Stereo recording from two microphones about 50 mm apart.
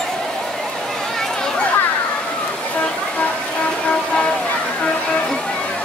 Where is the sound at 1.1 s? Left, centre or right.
Centre.